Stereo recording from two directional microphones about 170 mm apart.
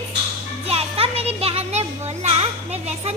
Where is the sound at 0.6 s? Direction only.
35° right (ahead or behind).